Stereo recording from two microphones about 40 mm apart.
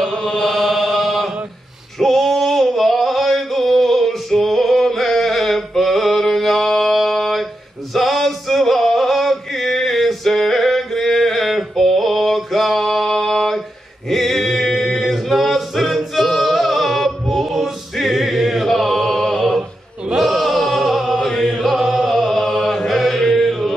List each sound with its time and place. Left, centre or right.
0.1 s chant: centre
0.5 s chant: centre
2.0 s a sound: centre
7.9 s male singing: centre
18.7 s mantra: centre
20.2 s chant: centre
21.2 s chant: centre
21.5 s chant: centre